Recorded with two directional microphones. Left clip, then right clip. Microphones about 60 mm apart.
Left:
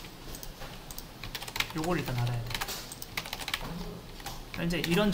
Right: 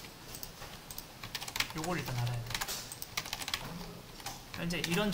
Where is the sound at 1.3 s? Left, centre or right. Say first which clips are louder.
Left 3 dB; left.